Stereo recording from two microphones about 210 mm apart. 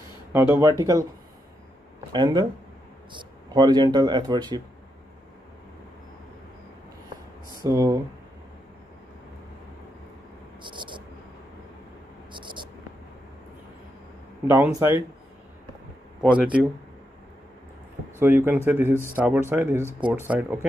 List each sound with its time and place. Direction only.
0.3 s speech: 15° right (ahead or behind)
2.1 s speech: 20° right (ahead or behind)
7.6 s speech: 15° right (ahead or behind)
10.6 s a sound: 20° right (ahead or behind)
12.3 s a sound: 20° right (ahead or behind)
14.5 s speech: 15° right (ahead or behind)
16.2 s speech: 5° right (ahead or behind)
18.2 s speech: 10° right (ahead or behind)